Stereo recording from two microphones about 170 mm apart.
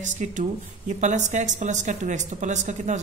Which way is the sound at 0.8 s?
45° right (ahead or behind).